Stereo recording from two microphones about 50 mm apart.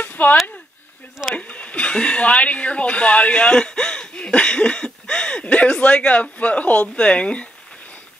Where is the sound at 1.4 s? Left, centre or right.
Left.